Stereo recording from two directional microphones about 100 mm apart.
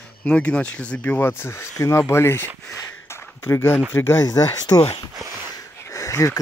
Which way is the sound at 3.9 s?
25° left (ahead or behind).